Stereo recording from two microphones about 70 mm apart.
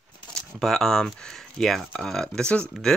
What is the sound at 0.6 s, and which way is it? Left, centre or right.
Speech, centre.